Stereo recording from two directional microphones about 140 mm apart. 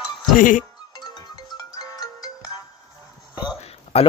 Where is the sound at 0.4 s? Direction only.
70° left (ahead or behind).